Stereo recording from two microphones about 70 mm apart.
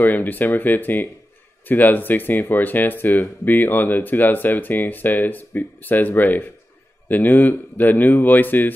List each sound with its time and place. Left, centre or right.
0.0 s speech: left